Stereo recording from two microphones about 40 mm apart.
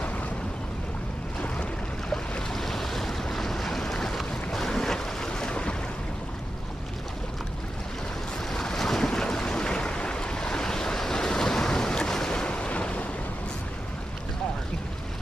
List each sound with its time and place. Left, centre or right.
2.5 s waves: centre
4.2 s boat: centre; by 5.8 s left
8.5 s boat: centre; by 13.0 s left